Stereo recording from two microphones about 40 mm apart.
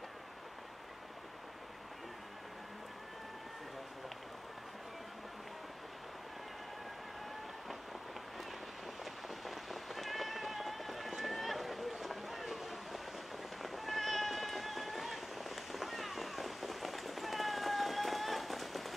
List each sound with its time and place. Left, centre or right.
9.0 s cat: centre